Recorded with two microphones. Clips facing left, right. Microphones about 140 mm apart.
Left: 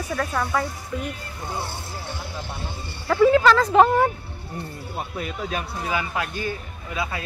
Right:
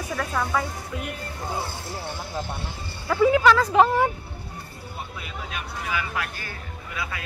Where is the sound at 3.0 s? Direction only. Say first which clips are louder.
Left 2 dB; 10° right (ahead or behind).